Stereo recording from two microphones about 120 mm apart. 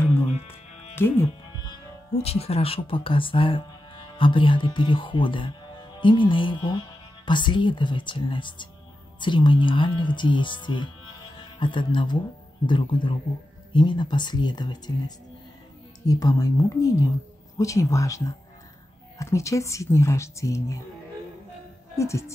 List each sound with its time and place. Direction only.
0.0 s music: 20° left (ahead or behind)
2.2 s speech: 55° left (ahead or behind); by 20.8 s 25° left (ahead or behind)
21.9 s speech: 25° left (ahead or behind)